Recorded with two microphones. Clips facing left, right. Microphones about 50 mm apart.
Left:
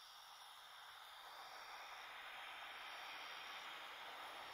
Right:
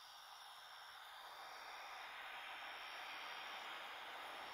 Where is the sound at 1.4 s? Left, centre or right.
Right.